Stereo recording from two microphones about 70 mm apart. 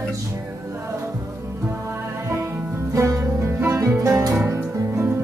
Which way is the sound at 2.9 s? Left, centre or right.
Right.